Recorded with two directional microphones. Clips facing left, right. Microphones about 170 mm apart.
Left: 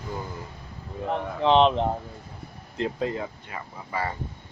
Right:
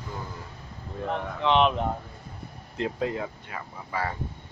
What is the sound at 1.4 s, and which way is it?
Speech, 30° left (ahead or behind).